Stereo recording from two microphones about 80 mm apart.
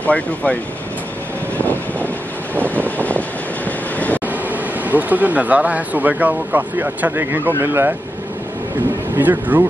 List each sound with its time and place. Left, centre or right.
0.0 s speech: centre
1.6 s vehicle: left
2.6 s vehicle: right
3.1 s train: centre
4.3 s speech: right
9.1 s speech: right